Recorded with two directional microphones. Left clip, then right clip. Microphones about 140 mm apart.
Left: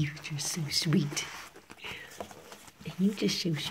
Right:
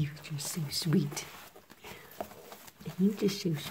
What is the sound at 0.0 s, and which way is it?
Speech, 25° right (ahead or behind).